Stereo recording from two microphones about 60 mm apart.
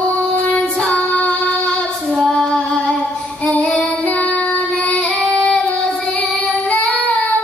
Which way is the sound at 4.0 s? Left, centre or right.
Left.